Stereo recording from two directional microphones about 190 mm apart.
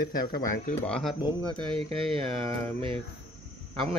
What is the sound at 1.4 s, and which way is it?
Speech, 30° right (ahead or behind).